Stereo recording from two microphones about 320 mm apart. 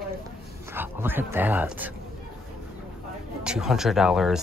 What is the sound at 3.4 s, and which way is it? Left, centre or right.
Speech, centre.